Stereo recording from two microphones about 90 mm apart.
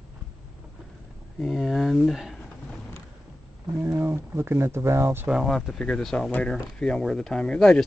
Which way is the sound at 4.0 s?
25° right (ahead or behind).